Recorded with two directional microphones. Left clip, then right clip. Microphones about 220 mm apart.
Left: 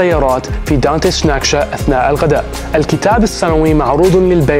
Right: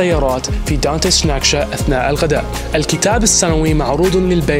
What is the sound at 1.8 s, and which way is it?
Speech, 15° left (ahead or behind).